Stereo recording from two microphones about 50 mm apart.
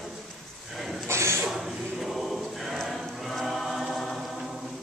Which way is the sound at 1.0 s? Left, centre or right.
Right.